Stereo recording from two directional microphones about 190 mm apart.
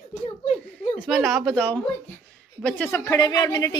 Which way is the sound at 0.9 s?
Centre (ahead or behind).